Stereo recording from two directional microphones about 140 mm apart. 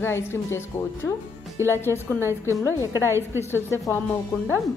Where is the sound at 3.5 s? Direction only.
15° left (ahead or behind).